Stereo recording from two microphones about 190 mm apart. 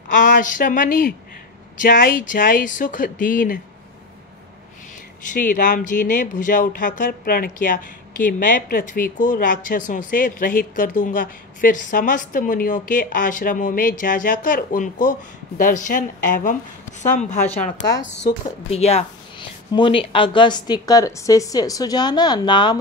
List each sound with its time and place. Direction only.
0.1 s speech: 45° left (ahead or behind)
5.3 s speech: 45° left (ahead or behind)
17.7 s a woman's voice: 65° left (ahead or behind)
18.7 s a woman's voice: 35° left (ahead or behind)